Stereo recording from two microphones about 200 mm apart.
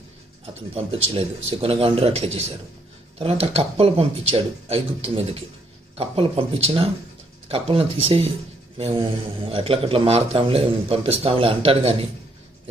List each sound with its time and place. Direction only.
0.7 s speech: 30° right (ahead or behind)